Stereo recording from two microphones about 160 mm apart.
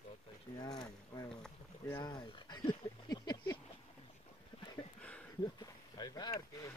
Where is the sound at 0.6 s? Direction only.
25° left (ahead or behind).